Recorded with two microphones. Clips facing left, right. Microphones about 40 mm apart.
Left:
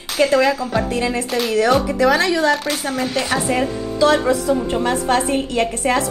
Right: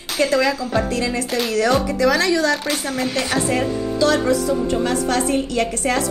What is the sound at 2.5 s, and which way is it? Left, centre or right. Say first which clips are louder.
Speech: left 1 dB; centre.